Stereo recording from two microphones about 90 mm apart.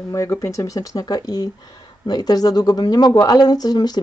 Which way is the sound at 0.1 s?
35° left (ahead or behind).